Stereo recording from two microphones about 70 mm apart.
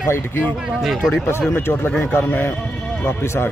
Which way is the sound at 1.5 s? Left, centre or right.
Left.